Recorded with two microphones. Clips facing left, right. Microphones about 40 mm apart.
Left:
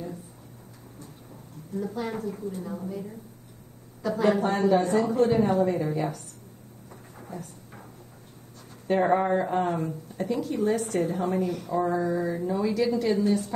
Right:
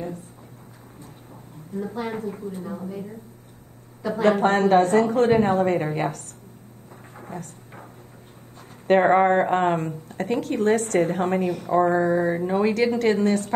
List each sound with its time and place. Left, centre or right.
1.3 s a woman's voice: right
4.4 s speech: right
8.8 s speech: right